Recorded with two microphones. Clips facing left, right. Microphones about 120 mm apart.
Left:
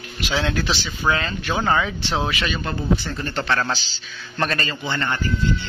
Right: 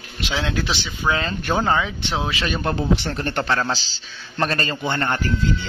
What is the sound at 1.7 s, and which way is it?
Speech, 10° right (ahead or behind).